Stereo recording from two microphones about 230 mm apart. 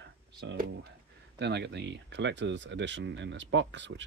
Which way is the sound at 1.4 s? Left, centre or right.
Right.